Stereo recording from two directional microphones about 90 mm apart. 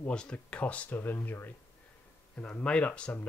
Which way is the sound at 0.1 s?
10° left (ahead or behind).